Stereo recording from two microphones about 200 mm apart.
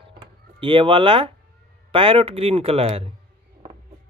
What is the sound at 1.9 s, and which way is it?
Speech, 25° right (ahead or behind).